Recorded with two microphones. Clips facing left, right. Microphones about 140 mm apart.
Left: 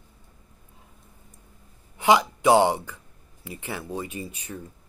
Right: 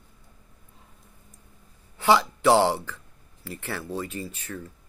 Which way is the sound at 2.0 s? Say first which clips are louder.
Left 1 dB; 15° left (ahead or behind).